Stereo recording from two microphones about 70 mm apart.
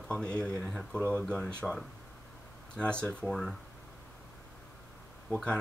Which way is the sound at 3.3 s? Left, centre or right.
Centre.